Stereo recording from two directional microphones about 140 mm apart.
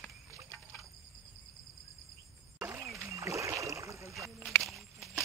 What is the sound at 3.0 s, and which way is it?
Rowboat, 20° right (ahead or behind).